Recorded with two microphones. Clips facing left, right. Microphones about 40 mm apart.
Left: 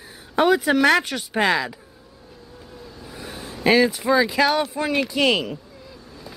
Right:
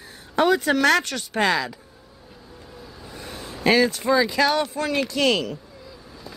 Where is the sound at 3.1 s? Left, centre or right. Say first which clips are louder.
Left 1 dB; centre.